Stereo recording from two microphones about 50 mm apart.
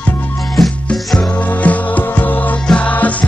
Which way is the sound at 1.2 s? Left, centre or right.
Left.